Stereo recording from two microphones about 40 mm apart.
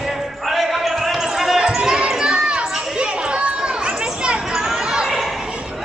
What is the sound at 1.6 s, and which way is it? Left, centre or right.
Basketball bounce, right.